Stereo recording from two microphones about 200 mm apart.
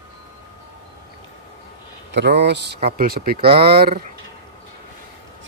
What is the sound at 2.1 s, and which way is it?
A man's voice, 60° right (ahead or behind).